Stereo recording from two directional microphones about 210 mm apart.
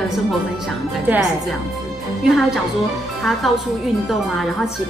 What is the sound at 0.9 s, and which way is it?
Speech, 10° right (ahead or behind).